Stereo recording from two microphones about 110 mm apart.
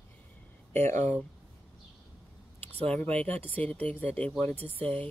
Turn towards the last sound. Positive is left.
turn(degrees=15)  # may be behind; listen again after turning